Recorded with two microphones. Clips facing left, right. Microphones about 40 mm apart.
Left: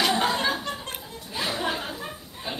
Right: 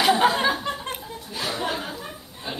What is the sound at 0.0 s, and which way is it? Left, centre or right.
Laughter, centre.